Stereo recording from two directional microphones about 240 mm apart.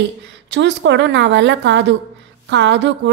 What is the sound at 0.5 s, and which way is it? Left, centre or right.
A woman's voice, right.